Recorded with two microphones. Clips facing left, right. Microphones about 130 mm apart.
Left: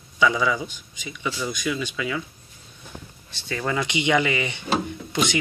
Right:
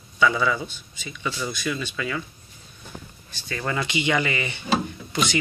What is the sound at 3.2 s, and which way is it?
Speech, 20° left (ahead or behind).